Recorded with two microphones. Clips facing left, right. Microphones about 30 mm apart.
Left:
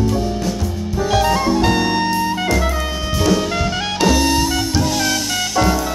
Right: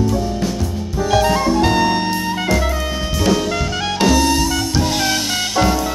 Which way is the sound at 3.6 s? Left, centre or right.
Centre.